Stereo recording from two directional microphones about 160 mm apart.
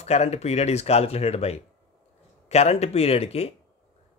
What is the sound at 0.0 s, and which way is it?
Speech, 40° left (ahead or behind).